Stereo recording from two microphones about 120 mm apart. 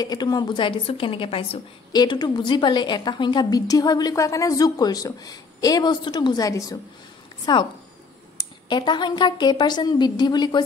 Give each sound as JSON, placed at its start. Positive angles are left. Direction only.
{"t": 0.0, "sound": "a woman's voice", "side_deg": 35}
{"t": 1.9, "sound": "a woman's voice", "side_deg": 35}
{"t": 8.6, "sound": "a woman's voice", "side_deg": 40}